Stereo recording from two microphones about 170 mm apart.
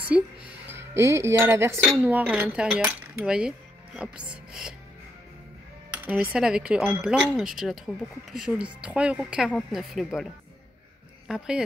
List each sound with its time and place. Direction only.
0.1 s speech: 5° right (ahead or behind)
2.0 s cutlery: 10° right (ahead or behind)
5.9 s cutlery: 10° right (ahead or behind)
6.3 s speech: 5° right (ahead or behind)
11.2 s speech: 5° right (ahead or behind)